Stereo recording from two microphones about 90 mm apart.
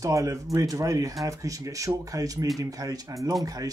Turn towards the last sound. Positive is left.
turn(degrees=-40)  # may be behind; listen again after turning